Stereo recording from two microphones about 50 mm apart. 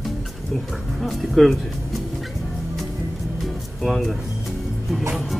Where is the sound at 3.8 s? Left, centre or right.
Centre.